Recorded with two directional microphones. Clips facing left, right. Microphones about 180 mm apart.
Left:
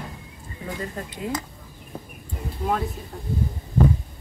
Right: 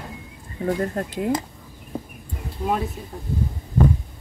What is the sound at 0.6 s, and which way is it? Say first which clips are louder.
Speech: right 8 dB; 55° right (ahead or behind).